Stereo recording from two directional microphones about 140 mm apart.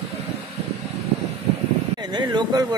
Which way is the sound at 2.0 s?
30° right (ahead or behind).